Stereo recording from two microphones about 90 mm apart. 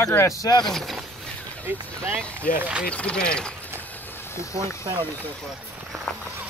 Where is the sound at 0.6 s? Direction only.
Centre (ahead or behind).